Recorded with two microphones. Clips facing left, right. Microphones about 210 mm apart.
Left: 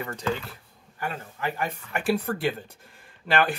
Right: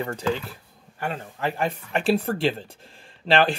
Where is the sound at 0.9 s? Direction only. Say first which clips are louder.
Right 3 dB; 30° right (ahead or behind).